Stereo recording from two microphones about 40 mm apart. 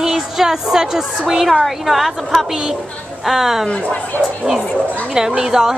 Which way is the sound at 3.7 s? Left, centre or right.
Left.